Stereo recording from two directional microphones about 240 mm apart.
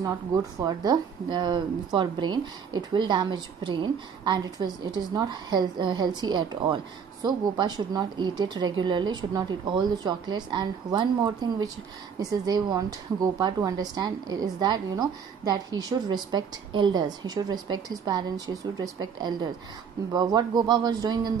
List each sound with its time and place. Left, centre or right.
0.0 s a woman's voice: centre